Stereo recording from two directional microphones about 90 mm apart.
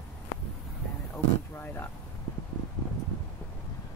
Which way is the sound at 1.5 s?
25° left (ahead or behind).